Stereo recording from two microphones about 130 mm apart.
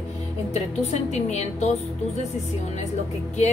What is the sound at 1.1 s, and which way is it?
Speech, 60° left (ahead or behind).